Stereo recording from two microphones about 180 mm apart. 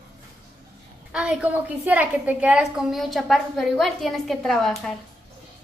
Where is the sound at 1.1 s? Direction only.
5° right (ahead or behind).